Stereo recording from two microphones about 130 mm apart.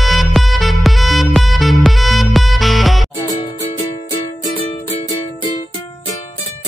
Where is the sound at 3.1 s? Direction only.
30° left (ahead or behind).